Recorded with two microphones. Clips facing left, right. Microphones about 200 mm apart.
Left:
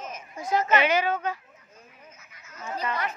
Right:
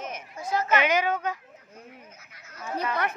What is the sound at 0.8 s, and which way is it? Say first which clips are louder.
Speech: left 1 dB; 15° right (ahead or behind).